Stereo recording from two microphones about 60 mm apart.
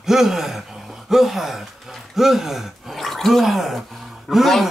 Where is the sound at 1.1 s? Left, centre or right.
Centre.